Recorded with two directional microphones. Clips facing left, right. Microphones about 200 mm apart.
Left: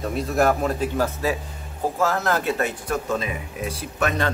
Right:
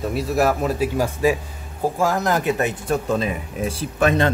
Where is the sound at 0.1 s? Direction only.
5° right (ahead or behind).